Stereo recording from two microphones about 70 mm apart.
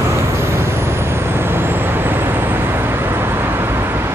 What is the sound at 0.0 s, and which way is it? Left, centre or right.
Vehicle, right.